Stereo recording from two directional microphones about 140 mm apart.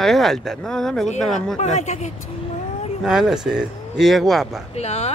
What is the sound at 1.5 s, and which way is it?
Speech, 60° left (ahead or behind).